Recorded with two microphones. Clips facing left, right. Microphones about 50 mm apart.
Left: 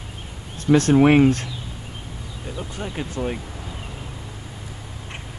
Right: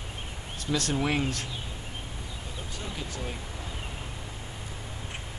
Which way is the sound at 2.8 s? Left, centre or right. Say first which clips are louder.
Left 10 dB; left.